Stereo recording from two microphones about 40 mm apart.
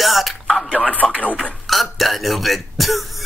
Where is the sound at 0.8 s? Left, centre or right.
Left.